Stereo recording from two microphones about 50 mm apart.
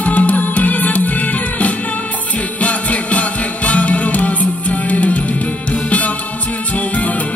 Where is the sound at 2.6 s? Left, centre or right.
Left.